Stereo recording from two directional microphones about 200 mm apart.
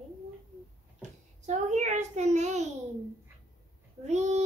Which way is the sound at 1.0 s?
35° right (ahead or behind).